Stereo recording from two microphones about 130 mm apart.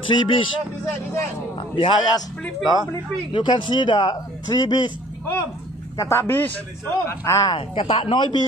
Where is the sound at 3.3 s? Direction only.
40° left (ahead or behind).